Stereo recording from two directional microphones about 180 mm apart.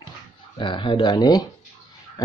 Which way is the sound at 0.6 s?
25° left (ahead or behind).